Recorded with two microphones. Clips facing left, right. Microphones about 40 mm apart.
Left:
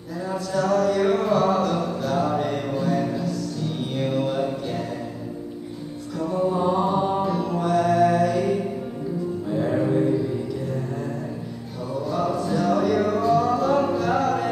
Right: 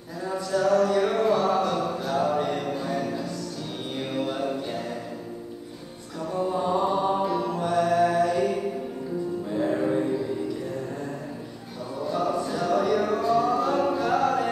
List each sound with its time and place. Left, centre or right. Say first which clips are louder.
0.2 s a sound: even; centre
6.1 s mantra: left 4 dB; centre
9.5 s music: left 3 dB; centre
11.9 s music: left 2 dB; centre